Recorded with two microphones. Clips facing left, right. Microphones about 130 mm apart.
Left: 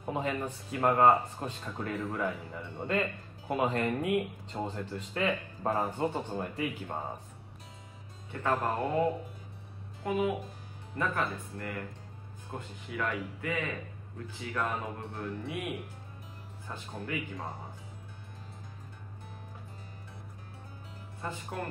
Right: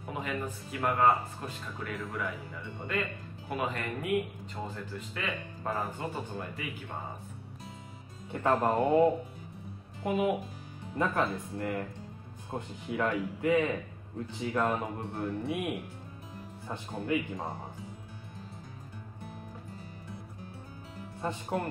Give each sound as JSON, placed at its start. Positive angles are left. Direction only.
{"t": 0.0, "sound": "speech", "side_deg": 25}
{"t": 8.3, "sound": "speech", "side_deg": -20}
{"t": 21.2, "sound": "speech", "side_deg": -25}